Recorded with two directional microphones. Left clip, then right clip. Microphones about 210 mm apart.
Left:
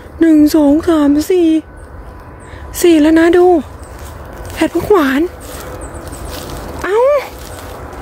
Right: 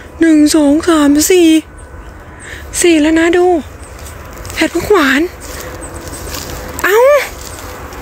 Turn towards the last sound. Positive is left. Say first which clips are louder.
# right 3 dB
turn(degrees=5)  # may be behind; listen again after turning